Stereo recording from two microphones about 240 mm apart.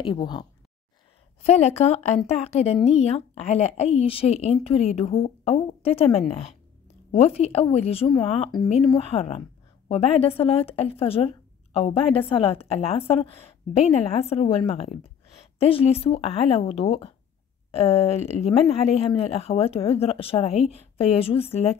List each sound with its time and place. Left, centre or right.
0.0 s speech: centre